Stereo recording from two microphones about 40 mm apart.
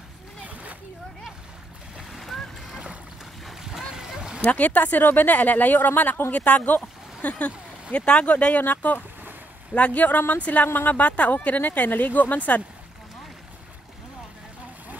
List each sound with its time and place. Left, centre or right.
0.4 s splash: right
2.1 s splash: centre
3.4 s splash: centre
4.4 s speech: left
6.3 s speech: left
8.5 s speech: left